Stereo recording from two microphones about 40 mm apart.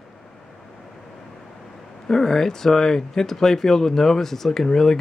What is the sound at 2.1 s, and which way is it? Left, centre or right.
Speech, centre.